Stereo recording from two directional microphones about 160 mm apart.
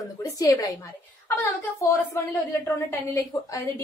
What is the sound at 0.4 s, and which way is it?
Speech, 20° left (ahead or behind).